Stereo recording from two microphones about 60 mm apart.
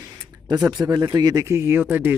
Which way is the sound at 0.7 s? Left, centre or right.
Right.